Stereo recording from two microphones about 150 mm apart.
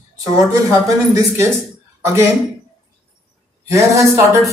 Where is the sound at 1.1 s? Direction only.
20° right (ahead or behind).